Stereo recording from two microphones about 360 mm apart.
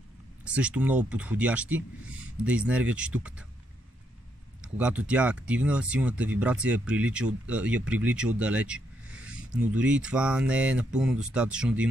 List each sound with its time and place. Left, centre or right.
0.5 s speech: centre
4.6 s speech: centre